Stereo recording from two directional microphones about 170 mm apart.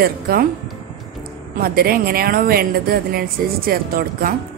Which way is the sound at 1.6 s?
60° right (ahead or behind).